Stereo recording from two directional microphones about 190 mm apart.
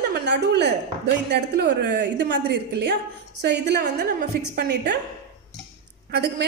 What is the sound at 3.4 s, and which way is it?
A woman's voice, 65° right (ahead or behind).